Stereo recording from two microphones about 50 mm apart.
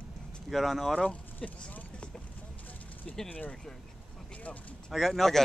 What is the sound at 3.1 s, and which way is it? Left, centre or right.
Speech, centre.